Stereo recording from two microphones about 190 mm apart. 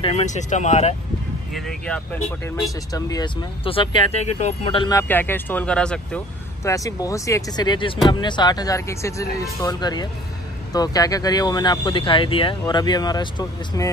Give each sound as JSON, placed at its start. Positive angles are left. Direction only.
{"t": 0.0, "sound": "speech", "side_deg": 35}
{"t": 1.5, "sound": "speech", "side_deg": 5}
{"t": 2.9, "sound": "speech", "side_deg": 20}
{"t": 4.9, "sound": "speech", "side_deg": 10}
{"t": 6.6, "sound": "speech", "side_deg": 15}